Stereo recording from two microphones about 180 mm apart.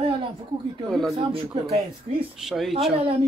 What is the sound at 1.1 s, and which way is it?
Speech, 35° right (ahead or behind).